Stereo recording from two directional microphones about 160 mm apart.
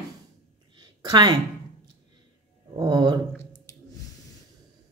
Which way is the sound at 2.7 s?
25° right (ahead or behind).